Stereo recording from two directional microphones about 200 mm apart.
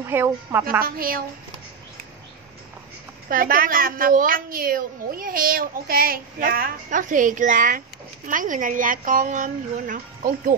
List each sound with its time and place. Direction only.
0.0 s a woman's voice: 10° right (ahead or behind)
0.8 s a woman's voice: 45° right (ahead or behind)
3.3 s a woman's voice: 45° right (ahead or behind)